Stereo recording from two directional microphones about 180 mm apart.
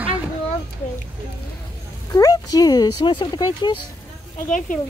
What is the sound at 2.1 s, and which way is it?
Speech, 20° left (ahead or behind).